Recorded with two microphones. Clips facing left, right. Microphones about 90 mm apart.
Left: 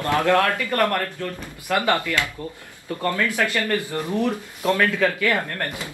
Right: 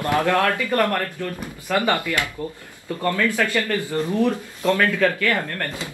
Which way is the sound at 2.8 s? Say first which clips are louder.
Right 2 dB; 20° left (ahead or behind).